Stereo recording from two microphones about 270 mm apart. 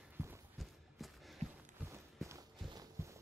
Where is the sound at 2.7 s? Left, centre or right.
Centre.